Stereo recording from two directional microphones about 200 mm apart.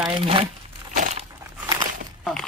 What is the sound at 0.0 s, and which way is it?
Speech, 25° right (ahead or behind).